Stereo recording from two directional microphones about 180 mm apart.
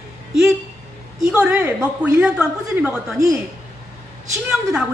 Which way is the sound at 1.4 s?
10° right (ahead or behind).